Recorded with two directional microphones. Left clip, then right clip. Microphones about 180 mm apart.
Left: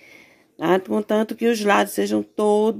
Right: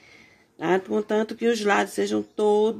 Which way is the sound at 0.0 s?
40° left (ahead or behind).